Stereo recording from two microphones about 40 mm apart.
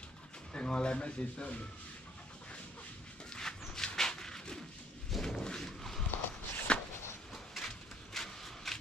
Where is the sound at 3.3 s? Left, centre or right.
Centre.